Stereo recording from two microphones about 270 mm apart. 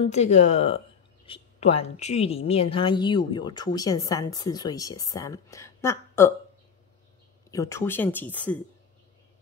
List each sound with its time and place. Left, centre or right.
0.1 s a woman's voice: left
7.5 s a woman's voice: centre